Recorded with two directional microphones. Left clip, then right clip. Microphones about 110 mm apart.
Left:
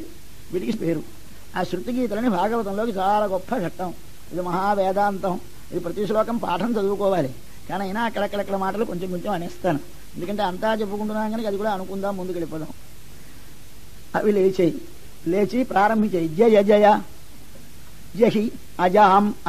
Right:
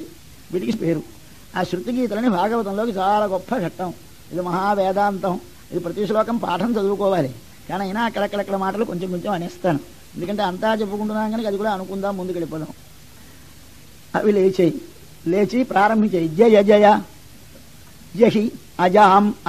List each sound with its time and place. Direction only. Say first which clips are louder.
0.5 s a man's voice: right 3 dB; 30° right (ahead or behind)
14.1 s a man's voice: right 2 dB; 25° right (ahead or behind)
18.1 s a man's voice: right 3 dB; 30° right (ahead or behind)